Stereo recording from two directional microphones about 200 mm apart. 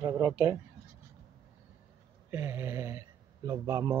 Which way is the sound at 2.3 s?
10° right (ahead or behind).